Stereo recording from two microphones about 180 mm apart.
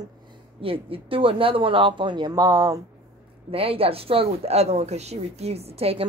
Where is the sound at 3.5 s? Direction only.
30° right (ahead or behind).